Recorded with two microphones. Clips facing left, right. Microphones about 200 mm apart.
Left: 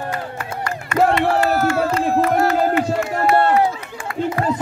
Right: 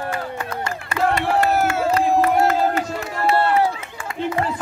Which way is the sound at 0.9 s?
35° right (ahead or behind).